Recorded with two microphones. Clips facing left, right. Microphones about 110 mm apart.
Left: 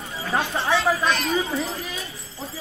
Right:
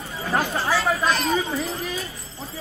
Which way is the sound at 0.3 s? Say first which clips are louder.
Even; 5° right (ahead or behind).